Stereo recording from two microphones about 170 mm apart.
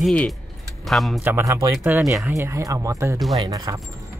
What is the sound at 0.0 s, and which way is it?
Speech, 5° left (ahead or behind).